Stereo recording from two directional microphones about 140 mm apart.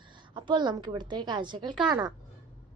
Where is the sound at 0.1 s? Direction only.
35° right (ahead or behind).